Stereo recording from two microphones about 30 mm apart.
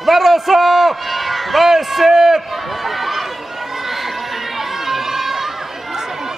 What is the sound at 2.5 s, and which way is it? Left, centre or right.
Run, centre.